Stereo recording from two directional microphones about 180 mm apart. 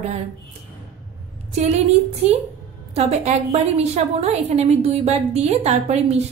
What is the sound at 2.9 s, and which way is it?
A woman's voice, 35° right (ahead or behind).